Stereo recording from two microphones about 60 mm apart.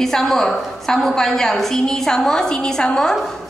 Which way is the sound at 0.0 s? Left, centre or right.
Centre.